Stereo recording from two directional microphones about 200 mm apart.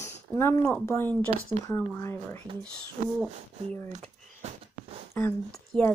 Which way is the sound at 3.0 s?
40° right (ahead or behind).